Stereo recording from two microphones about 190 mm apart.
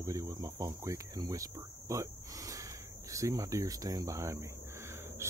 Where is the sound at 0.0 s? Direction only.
15° right (ahead or behind).